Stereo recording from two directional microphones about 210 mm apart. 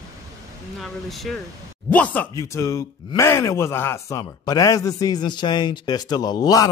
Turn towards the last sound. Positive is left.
turn(degrees=15)  # may be behind; listen again after turning